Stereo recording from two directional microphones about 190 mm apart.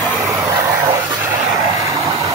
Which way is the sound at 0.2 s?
10° right (ahead or behind).